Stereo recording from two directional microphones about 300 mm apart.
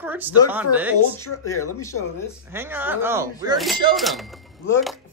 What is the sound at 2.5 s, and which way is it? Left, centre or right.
Speech, centre.